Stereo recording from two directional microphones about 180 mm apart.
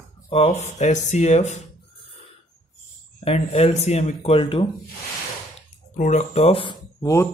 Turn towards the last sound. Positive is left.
turn(degrees=15)  # may be behind; listen again after turning